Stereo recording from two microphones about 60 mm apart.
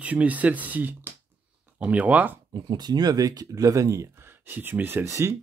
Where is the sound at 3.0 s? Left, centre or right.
Right.